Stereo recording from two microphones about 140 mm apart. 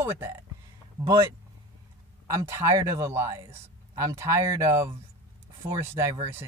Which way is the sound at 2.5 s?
20° right (ahead or behind).